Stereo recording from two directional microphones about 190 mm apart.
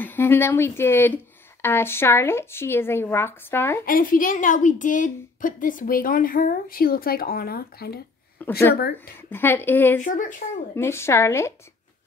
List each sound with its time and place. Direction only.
0.0 s speech: 10° left (ahead or behind)
3.8 s a woman's voice: 45° left (ahead or behind)
8.4 s speech: 10° left (ahead or behind)
10.0 s a woman's voice: 45° left (ahead or behind)
10.8 s speech: 15° left (ahead or behind)